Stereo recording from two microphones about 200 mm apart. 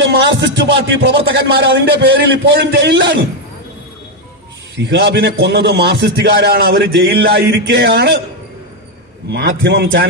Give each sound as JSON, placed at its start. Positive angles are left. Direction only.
{"t": 0.0, "sound": "music", "side_deg": -60}
{"t": 1.7, "sound": "a man's voice", "side_deg": -60}
{"t": 4.7, "sound": "a man's voice", "side_deg": -60}
{"t": 9.3, "sound": "a man's voice", "side_deg": -60}